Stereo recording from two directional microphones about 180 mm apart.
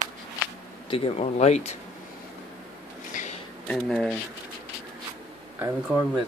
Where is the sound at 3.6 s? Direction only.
5° left (ahead or behind).